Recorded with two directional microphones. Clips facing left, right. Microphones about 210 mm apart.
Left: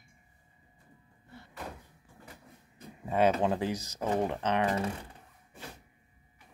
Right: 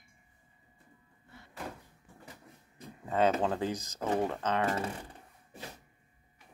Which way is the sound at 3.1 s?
10° left (ahead or behind).